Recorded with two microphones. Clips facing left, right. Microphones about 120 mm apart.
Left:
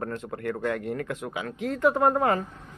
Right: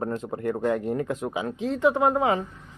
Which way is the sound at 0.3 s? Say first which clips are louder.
Right 4 dB; 20° right (ahead or behind).